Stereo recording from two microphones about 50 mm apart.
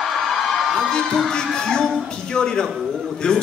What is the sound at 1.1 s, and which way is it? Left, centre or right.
A man's voice, centre.